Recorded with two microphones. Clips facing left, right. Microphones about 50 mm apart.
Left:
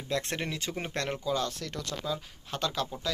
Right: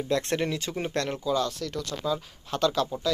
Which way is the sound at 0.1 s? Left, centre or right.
Centre.